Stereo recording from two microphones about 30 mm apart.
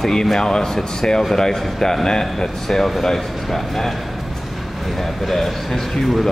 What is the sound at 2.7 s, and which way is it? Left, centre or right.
Speech, centre.